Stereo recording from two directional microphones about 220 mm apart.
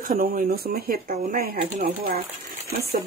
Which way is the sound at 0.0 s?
40° right (ahead or behind).